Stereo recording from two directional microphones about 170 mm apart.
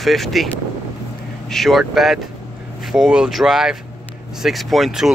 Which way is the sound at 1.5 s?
Centre (ahead or behind).